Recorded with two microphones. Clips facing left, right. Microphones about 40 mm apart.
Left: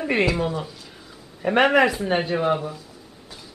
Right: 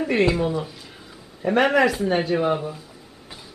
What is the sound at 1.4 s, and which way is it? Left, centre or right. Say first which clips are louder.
Speech: left 1 dB; left.